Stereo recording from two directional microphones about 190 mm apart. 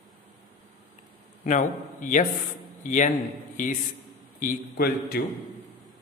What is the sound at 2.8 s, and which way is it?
Mantra, 40° left (ahead or behind).